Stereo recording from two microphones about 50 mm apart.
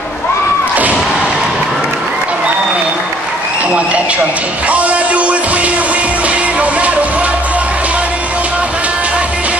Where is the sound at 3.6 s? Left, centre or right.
Right.